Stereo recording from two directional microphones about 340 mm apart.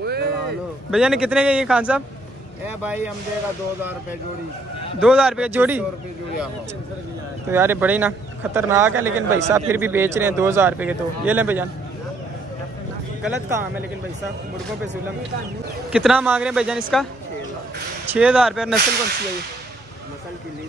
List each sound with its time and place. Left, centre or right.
0.0 s a sound: right
0.9 s a man's voice: centre
5.0 s a man's voice: centre
7.4 s a man's voice: centre
13.2 s a man's voice: centre
15.9 s a man's voice: centre